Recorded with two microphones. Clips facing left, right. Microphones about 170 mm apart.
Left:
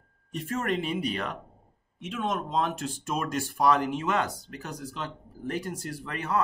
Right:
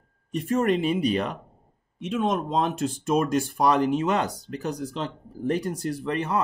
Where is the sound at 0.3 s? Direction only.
20° right (ahead or behind).